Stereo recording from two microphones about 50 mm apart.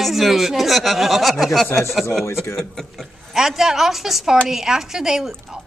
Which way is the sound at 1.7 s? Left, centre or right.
Left.